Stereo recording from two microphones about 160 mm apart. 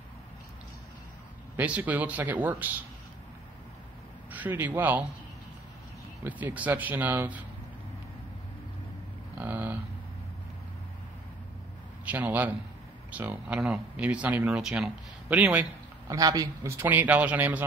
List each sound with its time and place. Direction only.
1.6 s speech: 10° right (ahead or behind)
4.3 s a man's voice: 10° right (ahead or behind)
6.2 s speech: 10° right (ahead or behind)
9.4 s a sound: 10° right (ahead or behind)
12.0 s a man's voice: 10° right (ahead or behind)
16.1 s speech: 25° right (ahead or behind)
16.8 s speech: 10° right (ahead or behind)